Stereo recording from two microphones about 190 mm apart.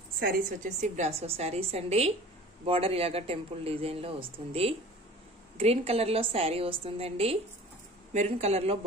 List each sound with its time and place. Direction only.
0.2 s speech: 45° right (ahead or behind)